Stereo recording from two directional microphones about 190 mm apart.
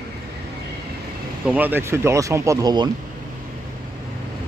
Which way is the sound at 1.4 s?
10° right (ahead or behind).